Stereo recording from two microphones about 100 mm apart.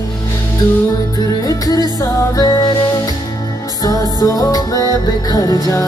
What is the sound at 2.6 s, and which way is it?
Music, 45° left (ahead or behind).